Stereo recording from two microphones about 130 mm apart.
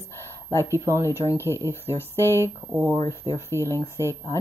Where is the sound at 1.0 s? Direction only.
25° left (ahead or behind).